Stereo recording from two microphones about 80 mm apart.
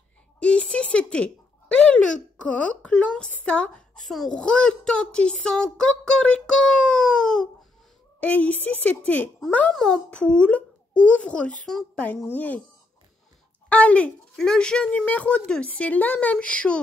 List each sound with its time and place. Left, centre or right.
0.4 s a sound: centre
2.4 s a woman's voice: centre
9.8 s a woman's voice: centre
13.7 s a woman's voice: centre